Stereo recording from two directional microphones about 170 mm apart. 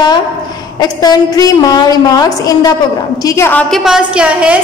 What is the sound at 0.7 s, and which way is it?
A woman's voice, 20° left (ahead or behind).